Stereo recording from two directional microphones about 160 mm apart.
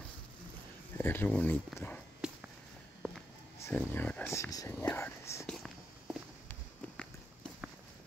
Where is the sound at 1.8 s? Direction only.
10° left (ahead or behind).